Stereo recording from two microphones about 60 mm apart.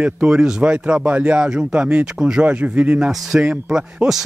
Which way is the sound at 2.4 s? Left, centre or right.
Right.